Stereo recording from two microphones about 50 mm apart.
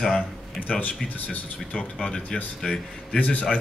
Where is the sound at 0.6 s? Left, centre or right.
Left.